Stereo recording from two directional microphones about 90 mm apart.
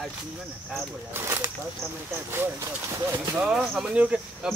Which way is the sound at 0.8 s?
30° right (ahead or behind).